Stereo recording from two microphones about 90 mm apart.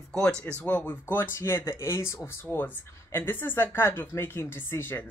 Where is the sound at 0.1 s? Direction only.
10° left (ahead or behind).